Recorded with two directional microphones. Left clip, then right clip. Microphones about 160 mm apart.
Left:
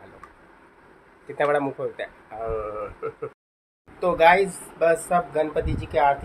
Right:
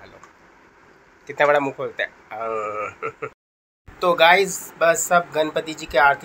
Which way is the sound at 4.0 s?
10° right (ahead or behind).